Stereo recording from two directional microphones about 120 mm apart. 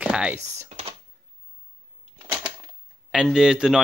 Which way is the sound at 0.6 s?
60° right (ahead or behind).